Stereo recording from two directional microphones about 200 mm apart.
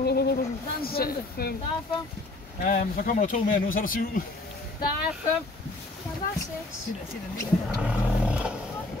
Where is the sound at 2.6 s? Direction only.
45° left (ahead or behind).